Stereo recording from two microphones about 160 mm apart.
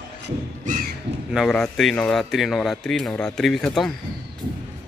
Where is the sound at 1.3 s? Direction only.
Centre (ahead or behind).